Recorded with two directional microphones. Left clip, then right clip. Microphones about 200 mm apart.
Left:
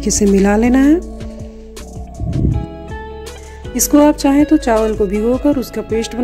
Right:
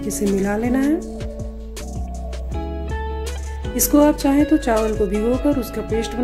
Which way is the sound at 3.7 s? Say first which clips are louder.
Left 4 dB; 40° left (ahead or behind).